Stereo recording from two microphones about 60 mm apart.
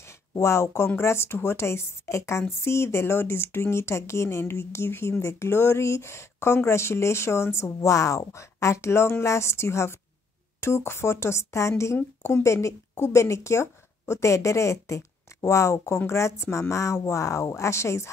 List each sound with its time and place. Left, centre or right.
0.4 s speech: left